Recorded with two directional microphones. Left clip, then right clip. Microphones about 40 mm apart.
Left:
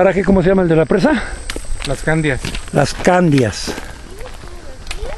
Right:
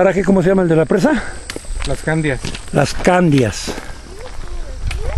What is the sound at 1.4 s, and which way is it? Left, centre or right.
Walk, left.